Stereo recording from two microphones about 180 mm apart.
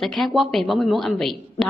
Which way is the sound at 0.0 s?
Centre (ahead or behind).